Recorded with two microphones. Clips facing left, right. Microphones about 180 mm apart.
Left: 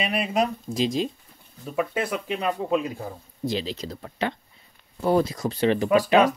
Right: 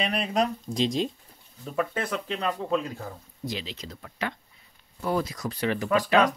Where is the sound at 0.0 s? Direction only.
5° left (ahead or behind).